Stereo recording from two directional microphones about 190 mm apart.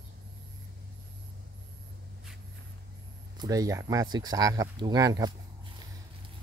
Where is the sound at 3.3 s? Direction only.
20° right (ahead or behind).